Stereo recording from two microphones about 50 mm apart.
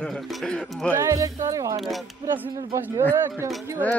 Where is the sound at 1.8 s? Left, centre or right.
Centre.